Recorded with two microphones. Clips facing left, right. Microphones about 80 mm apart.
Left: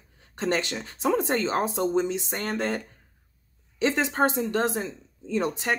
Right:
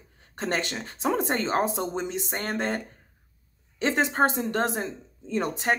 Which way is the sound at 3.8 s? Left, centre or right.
Right.